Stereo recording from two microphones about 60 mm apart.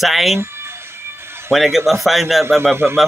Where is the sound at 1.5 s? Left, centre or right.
Centre.